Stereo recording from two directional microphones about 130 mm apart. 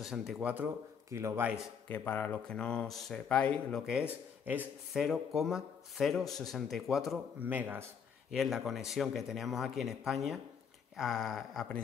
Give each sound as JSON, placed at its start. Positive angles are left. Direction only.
{"t": 0.0, "sound": "speech", "side_deg": -5}
{"t": 1.1, "sound": "speech", "side_deg": -20}
{"t": 1.9, "sound": "speech", "side_deg": 15}
{"t": 3.8, "sound": "speech", "side_deg": -10}
{"t": 5.0, "sound": "speech", "side_deg": 0}
{"t": 7.4, "sound": "speech", "side_deg": -15}
{"t": 8.3, "sound": "speech", "side_deg": 0}